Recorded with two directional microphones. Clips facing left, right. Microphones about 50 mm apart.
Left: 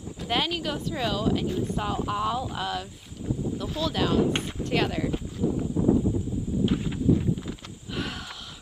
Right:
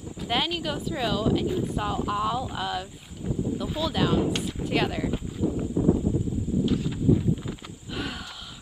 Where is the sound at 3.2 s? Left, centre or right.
Centre.